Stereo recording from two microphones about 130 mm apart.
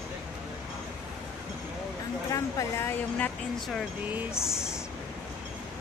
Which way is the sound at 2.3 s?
25° left (ahead or behind).